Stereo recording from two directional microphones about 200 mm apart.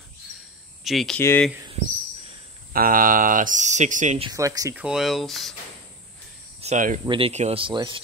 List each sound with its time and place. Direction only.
0.8 s speech: centre (ahead or behind)
2.7 s speech: 45° right (ahead or behind)
4.3 s speech: 15° right (ahead or behind); by 5.5 s centre (ahead or behind)
6.6 s speech: 35° right (ahead or behind)